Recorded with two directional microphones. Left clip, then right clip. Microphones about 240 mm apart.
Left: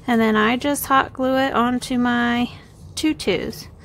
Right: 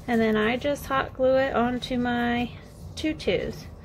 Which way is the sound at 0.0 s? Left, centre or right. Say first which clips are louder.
Left 6 dB; left.